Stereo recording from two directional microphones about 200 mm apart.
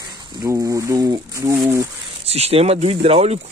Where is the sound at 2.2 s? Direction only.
30° right (ahead or behind).